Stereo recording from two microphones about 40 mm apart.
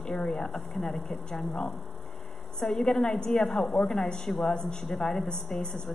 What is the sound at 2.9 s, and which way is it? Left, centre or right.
A woman's voice, centre.